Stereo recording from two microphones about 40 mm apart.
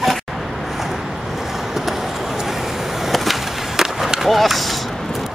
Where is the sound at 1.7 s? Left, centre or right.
Centre.